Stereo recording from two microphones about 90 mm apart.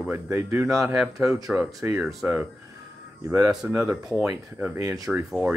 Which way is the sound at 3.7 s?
25° right (ahead or behind).